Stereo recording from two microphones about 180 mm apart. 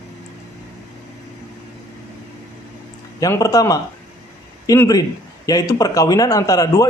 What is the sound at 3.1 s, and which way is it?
A man's voice, 20° left (ahead or behind).